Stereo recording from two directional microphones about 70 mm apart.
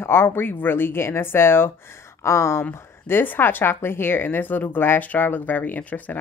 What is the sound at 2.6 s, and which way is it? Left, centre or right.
Speech, left.